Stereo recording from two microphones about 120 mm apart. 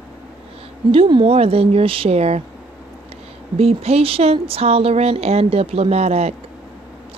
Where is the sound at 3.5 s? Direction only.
60° right (ahead or behind).